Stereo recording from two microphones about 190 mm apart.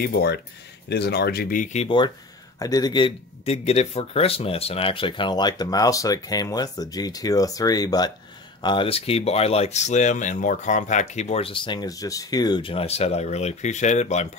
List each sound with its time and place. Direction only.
0.0 s speech: 60° left (ahead or behind); by 2.0 s 35° left (ahead or behind)
2.6 s speech: 20° left (ahead or behind); by 14.3 s 35° left (ahead or behind)